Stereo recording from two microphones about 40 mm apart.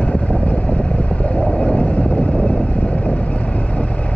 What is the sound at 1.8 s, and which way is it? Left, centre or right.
Vehicle, left.